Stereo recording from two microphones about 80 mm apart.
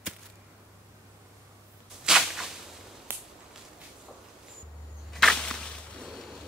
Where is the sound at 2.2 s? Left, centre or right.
Centre.